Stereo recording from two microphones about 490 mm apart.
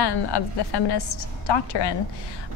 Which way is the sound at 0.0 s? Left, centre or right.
Left.